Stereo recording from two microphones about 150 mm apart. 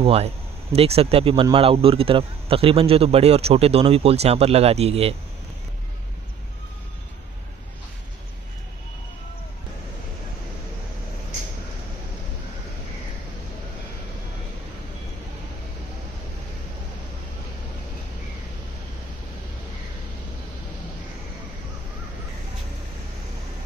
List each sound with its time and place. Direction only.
0.0 s speech: 40° right (ahead or behind)